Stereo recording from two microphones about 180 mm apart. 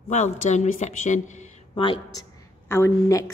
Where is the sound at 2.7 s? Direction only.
15° left (ahead or behind).